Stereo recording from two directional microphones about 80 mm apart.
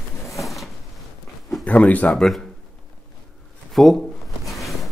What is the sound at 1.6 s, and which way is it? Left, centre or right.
Speech, centre.